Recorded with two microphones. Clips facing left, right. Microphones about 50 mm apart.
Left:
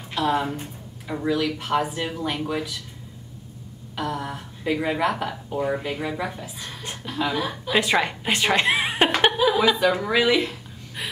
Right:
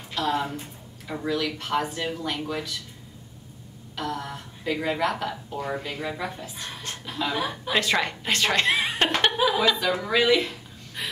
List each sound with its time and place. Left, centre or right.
0.1 s speech: centre
3.9 s speech: centre
7.3 s a woman's voice: centre
7.7 s a woman's voice: centre
9.3 s chuckle: centre
10.0 s speech: centre